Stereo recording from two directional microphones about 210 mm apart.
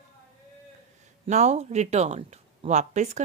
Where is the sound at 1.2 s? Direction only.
30° right (ahead or behind).